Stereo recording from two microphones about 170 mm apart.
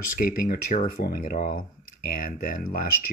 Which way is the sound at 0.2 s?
55° left (ahead or behind).